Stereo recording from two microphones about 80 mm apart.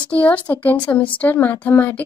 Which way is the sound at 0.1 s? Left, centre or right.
Left.